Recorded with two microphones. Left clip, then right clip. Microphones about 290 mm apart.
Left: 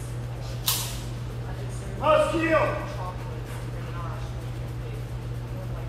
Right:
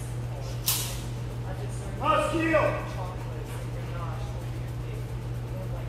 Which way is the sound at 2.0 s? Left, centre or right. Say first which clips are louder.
Left 4 dB; centre.